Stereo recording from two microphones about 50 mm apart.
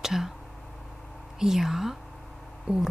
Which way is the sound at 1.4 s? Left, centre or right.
Centre.